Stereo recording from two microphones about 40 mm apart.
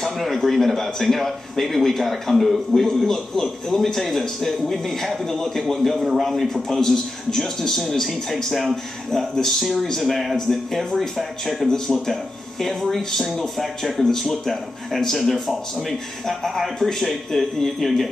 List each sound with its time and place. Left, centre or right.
0.0 s a man's voice: centre